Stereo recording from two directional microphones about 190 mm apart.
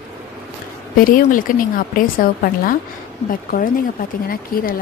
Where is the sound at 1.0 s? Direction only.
45° left (ahead or behind).